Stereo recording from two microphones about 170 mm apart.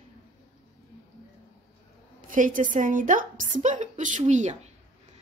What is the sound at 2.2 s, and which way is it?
A woman's voice, 50° right (ahead or behind).